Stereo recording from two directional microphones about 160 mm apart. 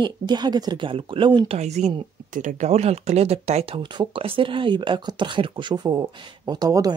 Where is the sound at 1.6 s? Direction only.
45° right (ahead or behind).